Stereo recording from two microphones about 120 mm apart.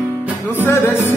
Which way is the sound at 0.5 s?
20° left (ahead or behind).